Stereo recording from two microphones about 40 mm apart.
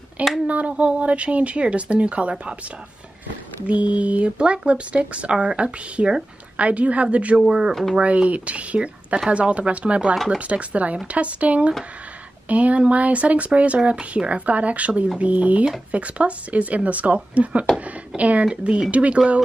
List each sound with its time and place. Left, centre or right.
0.5 s speech: right
3.6 s speech: right
7.3 s speech: centre
7.9 s speech: right